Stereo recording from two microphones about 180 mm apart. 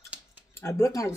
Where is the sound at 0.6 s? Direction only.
15° left (ahead or behind).